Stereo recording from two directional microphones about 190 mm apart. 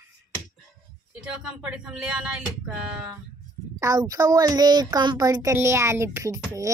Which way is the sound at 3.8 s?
15° right (ahead or behind).